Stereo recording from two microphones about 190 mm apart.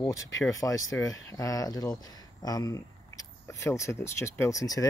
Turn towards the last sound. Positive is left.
turn(degrees=20)  # may be behind; listen again after turning